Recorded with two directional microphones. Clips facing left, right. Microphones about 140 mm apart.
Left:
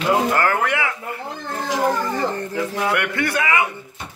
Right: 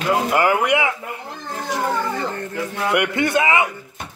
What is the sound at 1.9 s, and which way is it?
Speech, 35° left (ahead or behind).